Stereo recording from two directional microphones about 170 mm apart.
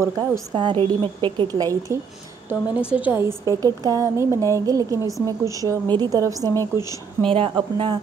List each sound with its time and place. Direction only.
0.0 s a woman's voice: 15° right (ahead or behind)
0.6 s a woman's voice: 30° right (ahead or behind)
6.5 s speech: 15° left (ahead or behind)
7.2 s speech: 30° right (ahead or behind)